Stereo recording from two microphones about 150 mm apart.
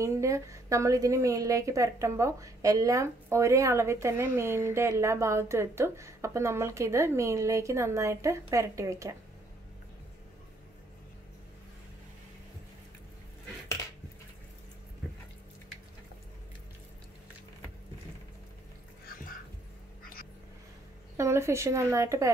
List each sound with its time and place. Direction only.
0.0 s speech: 20° right (ahead or behind)
21.2 s speech: 20° right (ahead or behind)